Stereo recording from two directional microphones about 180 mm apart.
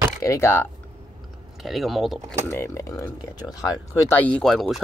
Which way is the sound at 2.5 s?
15° left (ahead or behind).